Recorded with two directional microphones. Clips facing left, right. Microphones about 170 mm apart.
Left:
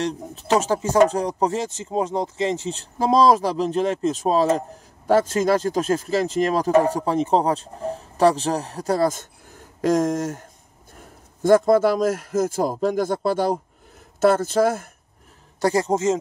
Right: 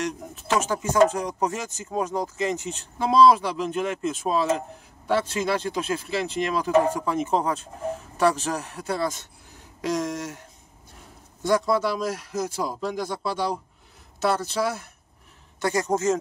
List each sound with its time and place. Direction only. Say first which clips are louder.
0.0 s speech: left 4 dB; 35° left (ahead or behind)
15.6 s speech: left 4 dB; 30° left (ahead or behind)